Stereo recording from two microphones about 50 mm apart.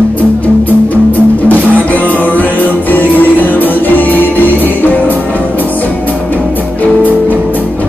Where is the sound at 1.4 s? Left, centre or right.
Left.